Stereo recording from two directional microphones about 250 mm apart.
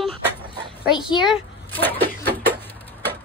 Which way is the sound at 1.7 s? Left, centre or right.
Centre.